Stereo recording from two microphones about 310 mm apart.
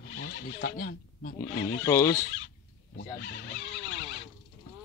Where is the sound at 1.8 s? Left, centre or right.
Centre.